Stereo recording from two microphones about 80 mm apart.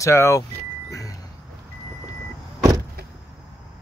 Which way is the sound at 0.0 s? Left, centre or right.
Left.